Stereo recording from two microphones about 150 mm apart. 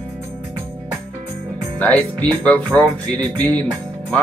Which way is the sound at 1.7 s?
10° left (ahead or behind).